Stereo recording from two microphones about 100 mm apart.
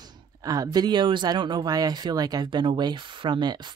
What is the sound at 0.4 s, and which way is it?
Speech, 35° right (ahead or behind).